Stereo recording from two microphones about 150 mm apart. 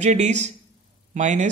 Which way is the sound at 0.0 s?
50° right (ahead or behind).